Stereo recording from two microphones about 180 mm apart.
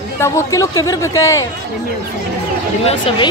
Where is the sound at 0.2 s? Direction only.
20° left (ahead or behind).